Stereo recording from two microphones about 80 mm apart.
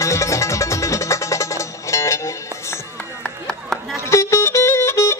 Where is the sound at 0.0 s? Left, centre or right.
Left.